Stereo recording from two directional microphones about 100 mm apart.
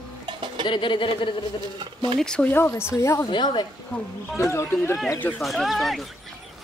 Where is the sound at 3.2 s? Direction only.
50° left (ahead or behind).